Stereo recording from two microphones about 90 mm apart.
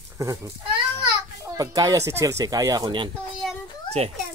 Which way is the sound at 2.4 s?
40° right (ahead or behind).